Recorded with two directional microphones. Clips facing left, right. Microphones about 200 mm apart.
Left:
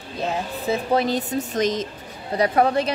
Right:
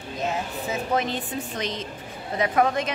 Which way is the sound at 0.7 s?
35° left (ahead or behind).